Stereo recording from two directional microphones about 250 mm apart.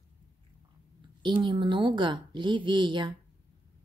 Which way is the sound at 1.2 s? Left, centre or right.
Centre.